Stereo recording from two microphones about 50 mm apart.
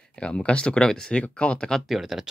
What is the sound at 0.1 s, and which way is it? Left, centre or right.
Speech, centre.